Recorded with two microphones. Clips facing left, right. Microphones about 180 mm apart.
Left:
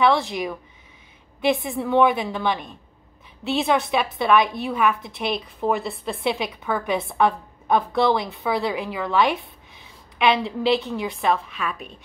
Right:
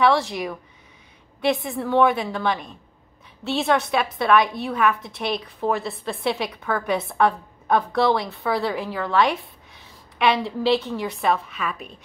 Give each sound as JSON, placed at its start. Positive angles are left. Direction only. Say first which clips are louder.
{"t": 0.0, "sound": "a woman's voice", "louder": "even", "side_deg": 0}